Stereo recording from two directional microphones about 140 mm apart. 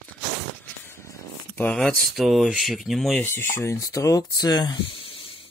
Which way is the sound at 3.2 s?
15° left (ahead or behind).